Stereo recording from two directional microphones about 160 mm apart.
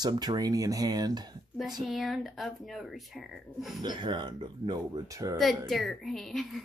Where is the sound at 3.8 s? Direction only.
25° right (ahead or behind).